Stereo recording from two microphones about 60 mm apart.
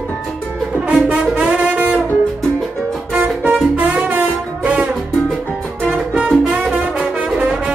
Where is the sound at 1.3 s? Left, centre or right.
Right.